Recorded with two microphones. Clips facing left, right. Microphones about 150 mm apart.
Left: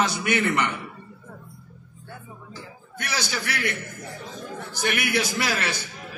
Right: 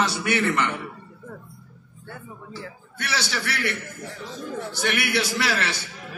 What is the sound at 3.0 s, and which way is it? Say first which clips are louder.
Speech: right 1 dB; 15° left (ahead or behind).